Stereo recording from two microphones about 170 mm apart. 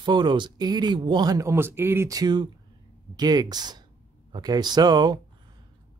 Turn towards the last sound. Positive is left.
turn(degrees=-25)  # may be behind; listen again after turning